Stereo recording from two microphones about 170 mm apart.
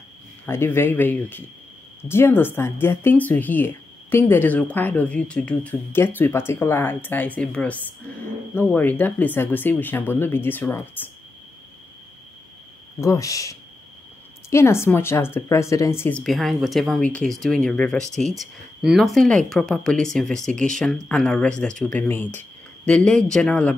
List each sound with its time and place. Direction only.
0.5 s speech: 15° left (ahead or behind)
13.0 s speech: 20° left (ahead or behind)